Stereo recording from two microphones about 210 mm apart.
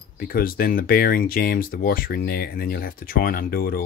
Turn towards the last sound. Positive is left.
turn(degrees=45)  # may be behind; listen again after turning